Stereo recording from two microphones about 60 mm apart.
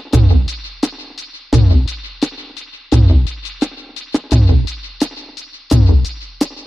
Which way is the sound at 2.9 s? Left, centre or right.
Centre.